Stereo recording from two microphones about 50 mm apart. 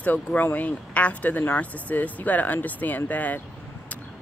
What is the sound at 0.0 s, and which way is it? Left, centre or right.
Speech, left.